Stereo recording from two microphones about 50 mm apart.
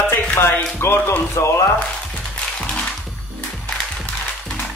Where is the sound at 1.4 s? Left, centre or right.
Left.